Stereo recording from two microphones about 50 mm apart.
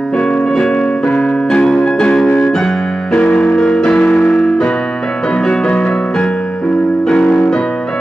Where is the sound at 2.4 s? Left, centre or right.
Centre.